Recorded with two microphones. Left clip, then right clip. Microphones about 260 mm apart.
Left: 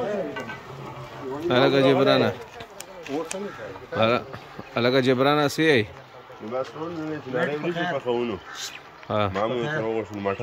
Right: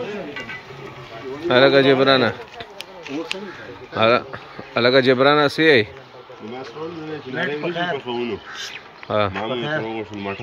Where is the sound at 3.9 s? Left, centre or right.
Centre.